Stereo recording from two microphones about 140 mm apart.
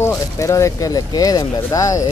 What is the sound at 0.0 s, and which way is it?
Speech, 20° left (ahead or behind).